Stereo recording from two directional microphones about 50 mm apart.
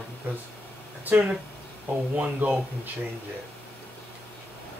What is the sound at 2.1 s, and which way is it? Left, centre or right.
Speech, right.